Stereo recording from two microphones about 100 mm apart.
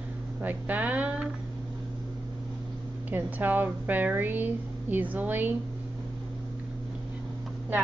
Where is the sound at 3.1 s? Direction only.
20° right (ahead or behind).